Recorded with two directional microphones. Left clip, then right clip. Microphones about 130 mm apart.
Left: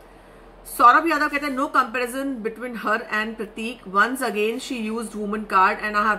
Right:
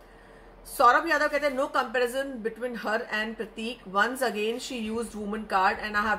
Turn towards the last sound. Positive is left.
turn(degrees=15)  # may be behind; listen again after turning